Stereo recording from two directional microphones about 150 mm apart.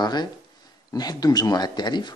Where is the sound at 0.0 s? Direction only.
30° left (ahead or behind).